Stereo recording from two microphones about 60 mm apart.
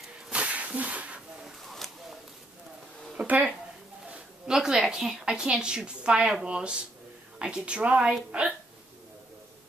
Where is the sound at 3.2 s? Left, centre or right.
Right.